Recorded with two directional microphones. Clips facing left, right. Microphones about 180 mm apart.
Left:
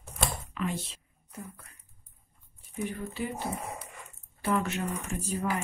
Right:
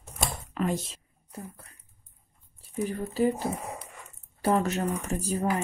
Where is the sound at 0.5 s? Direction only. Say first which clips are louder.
Right 6 dB; 40° right (ahead or behind).